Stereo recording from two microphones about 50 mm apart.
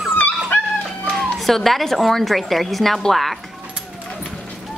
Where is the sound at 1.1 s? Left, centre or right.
Centre.